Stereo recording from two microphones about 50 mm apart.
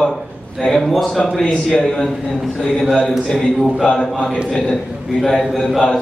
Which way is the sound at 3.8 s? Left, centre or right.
Centre.